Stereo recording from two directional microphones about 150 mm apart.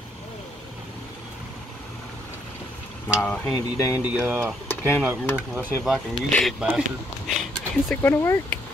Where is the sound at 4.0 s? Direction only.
10° right (ahead or behind).